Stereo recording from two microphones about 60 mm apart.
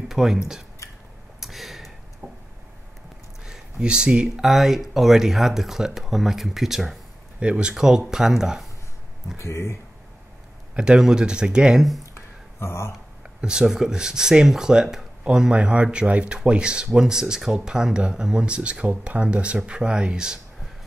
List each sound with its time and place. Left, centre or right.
0.1 s speech: centre
1.4 s a sound: centre
2.2 s a sound: right
3.4 s speech: centre
4.5 s speech: centre
7.3 s speech: centre
9.4 s speech: left
10.8 s speech: centre
12.1 s a sound: left
13.2 s speech: centre